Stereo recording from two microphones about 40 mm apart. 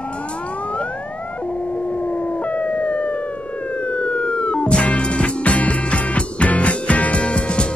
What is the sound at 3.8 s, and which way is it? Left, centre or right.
Music, left.